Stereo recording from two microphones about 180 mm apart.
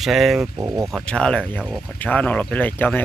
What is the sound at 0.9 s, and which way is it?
Speech, 5° left (ahead or behind).